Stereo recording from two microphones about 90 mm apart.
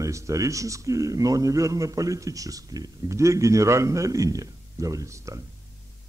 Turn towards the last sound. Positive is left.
turn(degrees=-35)  # may be behind; listen again after turning